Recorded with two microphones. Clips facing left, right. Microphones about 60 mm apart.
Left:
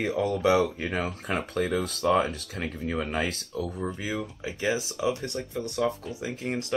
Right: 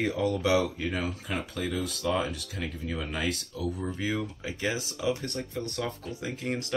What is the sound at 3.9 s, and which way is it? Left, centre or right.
Speech, centre.